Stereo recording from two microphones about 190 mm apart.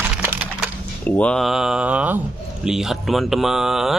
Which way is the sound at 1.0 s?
5° left (ahead or behind).